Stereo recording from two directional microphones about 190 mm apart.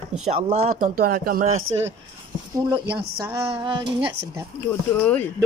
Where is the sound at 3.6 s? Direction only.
25° right (ahead or behind).